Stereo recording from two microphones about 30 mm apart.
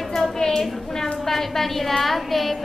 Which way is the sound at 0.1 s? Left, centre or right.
Centre.